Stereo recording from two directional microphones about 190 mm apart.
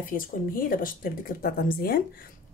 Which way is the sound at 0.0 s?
50° left (ahead or behind).